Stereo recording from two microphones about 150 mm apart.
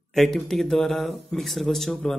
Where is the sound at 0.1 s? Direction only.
Centre (ahead or behind).